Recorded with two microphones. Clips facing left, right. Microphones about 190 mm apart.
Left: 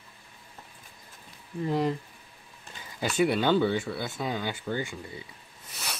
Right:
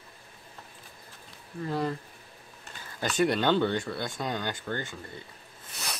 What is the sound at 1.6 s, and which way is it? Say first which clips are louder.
Speech: left 3 dB; 15° left (ahead or behind).